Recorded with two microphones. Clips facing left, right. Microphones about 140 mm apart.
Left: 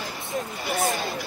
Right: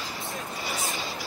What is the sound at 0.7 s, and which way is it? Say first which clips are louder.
Speech: left 9 dB; 55° left (ahead or behind).